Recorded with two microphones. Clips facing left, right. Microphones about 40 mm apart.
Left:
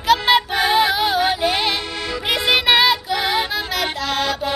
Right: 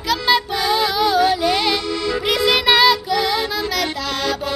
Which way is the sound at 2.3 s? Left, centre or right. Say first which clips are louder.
Even; left.